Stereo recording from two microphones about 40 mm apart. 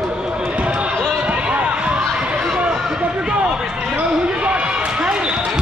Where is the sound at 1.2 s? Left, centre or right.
Right.